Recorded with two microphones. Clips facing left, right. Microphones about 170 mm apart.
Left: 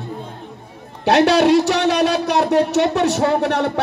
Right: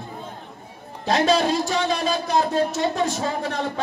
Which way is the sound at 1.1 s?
70° left (ahead or behind).